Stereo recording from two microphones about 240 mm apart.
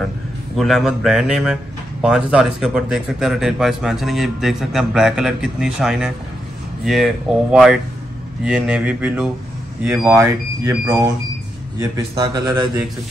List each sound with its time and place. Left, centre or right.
0.6 s speech: centre
12.2 s speech: centre